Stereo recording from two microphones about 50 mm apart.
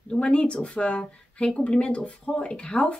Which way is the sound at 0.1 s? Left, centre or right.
Left.